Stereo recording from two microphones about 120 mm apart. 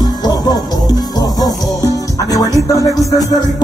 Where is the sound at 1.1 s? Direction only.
30° left (ahead or behind).